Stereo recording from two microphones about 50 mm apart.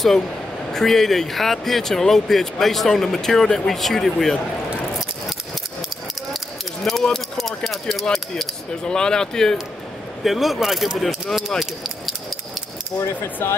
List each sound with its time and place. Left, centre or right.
0.7 s speech: centre
6.3 s a sound: centre
7.9 s speech: centre
10.2 s speech: centre
11.6 s a sound: centre
13.4 s speech: left